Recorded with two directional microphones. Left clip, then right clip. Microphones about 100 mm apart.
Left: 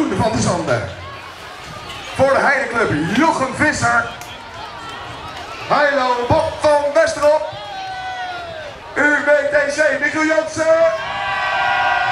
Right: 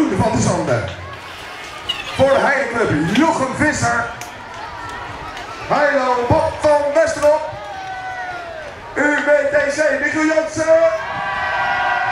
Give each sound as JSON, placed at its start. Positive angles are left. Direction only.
{"t": 0.1, "sound": "speech", "side_deg": 15}
{"t": 2.1, "sound": "speech", "side_deg": 15}
{"t": 5.7, "sound": "speech", "side_deg": 15}
{"t": 8.9, "sound": "speech", "side_deg": 15}
{"t": 11.0, "sound": "a sound", "side_deg": 25}